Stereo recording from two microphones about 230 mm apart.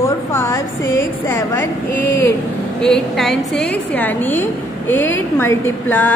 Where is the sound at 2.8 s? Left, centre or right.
Centre.